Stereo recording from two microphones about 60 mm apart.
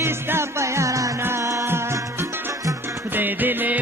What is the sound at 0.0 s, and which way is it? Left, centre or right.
Music, right.